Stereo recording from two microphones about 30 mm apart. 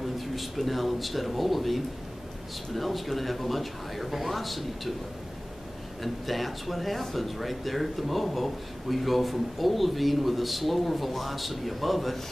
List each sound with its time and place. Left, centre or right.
0.0 s speech: centre
6.0 s speech: centre